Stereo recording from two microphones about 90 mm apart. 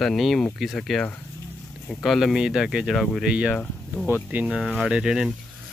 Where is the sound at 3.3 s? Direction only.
10° right (ahead or behind).